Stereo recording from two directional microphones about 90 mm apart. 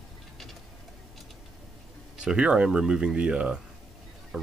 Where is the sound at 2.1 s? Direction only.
10° right (ahead or behind).